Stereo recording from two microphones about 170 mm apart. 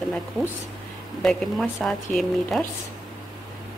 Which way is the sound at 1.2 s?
Centre (ahead or behind).